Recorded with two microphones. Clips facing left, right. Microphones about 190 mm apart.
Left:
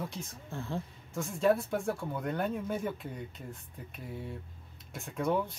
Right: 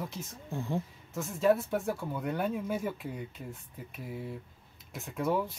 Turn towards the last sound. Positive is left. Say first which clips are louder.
# even
turn(degrees=-5)  # may be behind; listen again after turning